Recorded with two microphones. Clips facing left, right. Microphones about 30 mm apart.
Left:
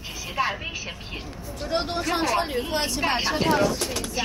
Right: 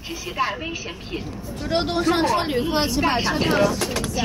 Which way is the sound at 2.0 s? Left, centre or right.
Right.